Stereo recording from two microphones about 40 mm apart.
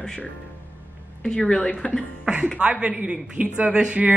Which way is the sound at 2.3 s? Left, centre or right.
Right.